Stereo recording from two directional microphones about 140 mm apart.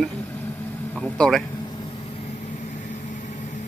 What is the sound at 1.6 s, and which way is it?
Vehicle, 35° left (ahead or behind).